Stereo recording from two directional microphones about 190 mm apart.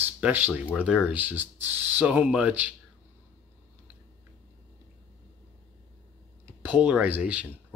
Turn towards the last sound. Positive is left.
turn(degrees=-10)  # may be behind; listen again after turning